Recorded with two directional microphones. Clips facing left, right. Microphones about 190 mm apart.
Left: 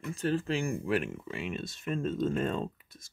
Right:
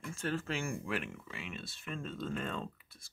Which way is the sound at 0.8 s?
45° left (ahead or behind).